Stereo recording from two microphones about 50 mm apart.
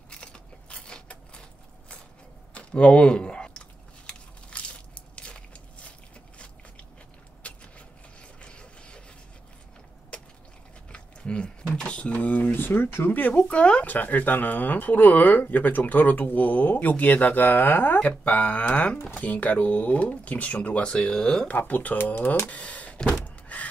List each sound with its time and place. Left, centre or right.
0.1 s mechanisms: left
2.5 s chewing: left
5.9 s biting: left
7.4 s vehicle: left
8.2 s printer: left
10.9 s a sound: centre; by 13.1 s left
13.3 s speech: left
13.9 s speech: left
17.9 s speech: left
21.5 s speech: left
21.9 s speech: left
22.5 s speech: left
23.2 s door: left